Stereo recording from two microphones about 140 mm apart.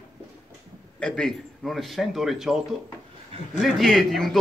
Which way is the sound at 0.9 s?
5° left (ahead or behind).